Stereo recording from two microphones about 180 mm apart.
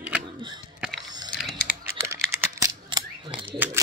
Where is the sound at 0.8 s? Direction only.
Centre (ahead or behind).